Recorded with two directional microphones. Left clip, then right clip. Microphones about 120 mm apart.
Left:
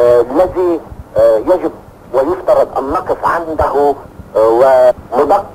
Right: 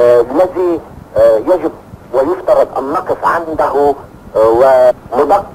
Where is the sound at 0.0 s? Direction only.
45° right (ahead or behind).